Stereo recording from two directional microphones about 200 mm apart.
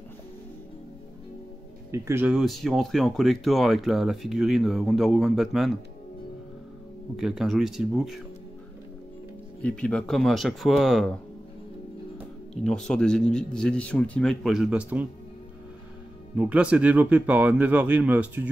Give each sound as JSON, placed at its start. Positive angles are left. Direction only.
{"t": 1.9, "sound": "speech", "side_deg": -10}
{"t": 7.2, "sound": "speech", "side_deg": 0}
{"t": 9.6, "sound": "speech", "side_deg": 5}
{"t": 12.6, "sound": "speech", "side_deg": 5}
{"t": 16.3, "sound": "speech", "side_deg": -5}